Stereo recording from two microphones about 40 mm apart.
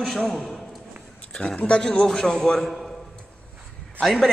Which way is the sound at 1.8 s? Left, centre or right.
Left.